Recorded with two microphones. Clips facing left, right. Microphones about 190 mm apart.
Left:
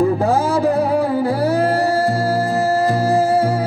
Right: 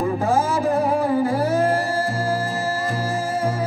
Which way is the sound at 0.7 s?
65° left (ahead or behind).